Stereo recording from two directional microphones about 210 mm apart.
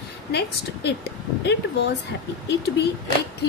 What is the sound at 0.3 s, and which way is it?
Speech, 50° left (ahead or behind).